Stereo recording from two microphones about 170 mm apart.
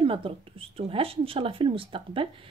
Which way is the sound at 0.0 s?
30° right (ahead or behind).